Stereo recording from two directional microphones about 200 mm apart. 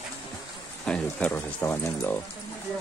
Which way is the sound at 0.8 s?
5° left (ahead or behind).